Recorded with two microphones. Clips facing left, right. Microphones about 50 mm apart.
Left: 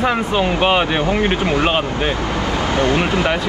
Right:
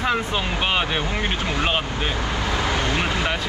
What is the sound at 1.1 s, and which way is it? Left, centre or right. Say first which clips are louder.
Speech: left 8 dB; left.